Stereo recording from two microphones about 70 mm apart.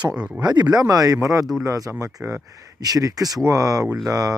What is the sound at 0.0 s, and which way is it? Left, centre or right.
Speech, centre.